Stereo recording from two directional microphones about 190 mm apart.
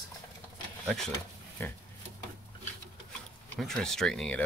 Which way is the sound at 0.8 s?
Centre (ahead or behind).